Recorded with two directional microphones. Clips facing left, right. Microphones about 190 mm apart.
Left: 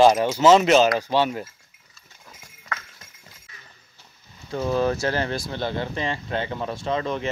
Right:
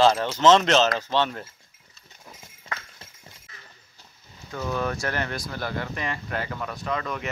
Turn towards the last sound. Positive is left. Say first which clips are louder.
# left 4 dB
turn(degrees=30)  # may be behind; listen again after turning